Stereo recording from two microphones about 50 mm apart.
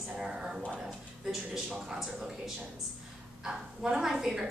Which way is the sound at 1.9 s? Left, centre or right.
Centre.